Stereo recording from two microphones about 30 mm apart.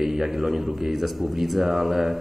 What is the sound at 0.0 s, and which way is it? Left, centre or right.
Speech, centre.